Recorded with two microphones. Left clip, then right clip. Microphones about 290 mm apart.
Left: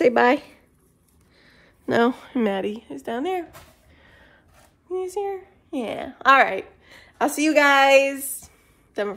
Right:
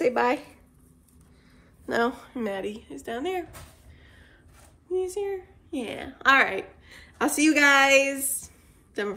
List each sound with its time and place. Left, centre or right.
0.0 s speech: left
1.9 s speech: left
4.0 s a sound: left
4.9 s a child's voice: left